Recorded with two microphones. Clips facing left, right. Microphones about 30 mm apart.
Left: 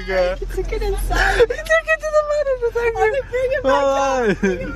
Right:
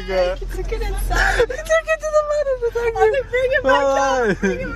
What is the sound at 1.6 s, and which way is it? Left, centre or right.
Speech, left.